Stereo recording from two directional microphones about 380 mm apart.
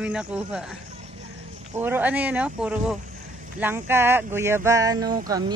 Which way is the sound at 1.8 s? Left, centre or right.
Centre.